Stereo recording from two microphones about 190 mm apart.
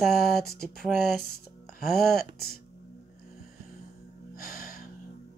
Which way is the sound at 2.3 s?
55° left (ahead or behind).